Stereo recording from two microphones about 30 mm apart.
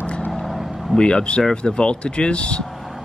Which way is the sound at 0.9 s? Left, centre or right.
Left.